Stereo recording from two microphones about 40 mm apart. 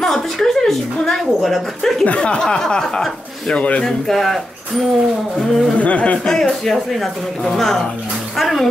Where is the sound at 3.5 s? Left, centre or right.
Left.